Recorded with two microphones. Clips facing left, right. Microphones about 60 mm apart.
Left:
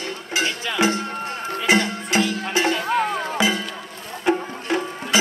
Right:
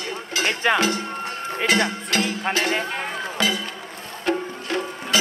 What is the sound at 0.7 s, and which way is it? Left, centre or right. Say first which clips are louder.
Music: left 1 dB; left.